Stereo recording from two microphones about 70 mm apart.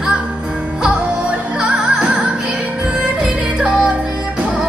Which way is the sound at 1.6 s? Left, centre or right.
Centre.